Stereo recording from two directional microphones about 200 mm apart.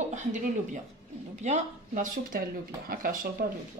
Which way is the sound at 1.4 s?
40° right (ahead or behind).